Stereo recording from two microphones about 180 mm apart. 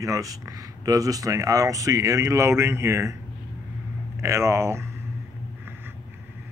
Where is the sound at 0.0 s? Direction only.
20° right (ahead or behind).